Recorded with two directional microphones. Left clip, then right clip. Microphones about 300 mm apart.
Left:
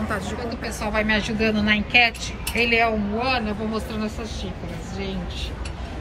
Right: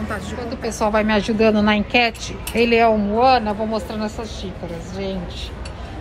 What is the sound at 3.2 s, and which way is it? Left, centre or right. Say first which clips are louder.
Speech: right 10 dB; right.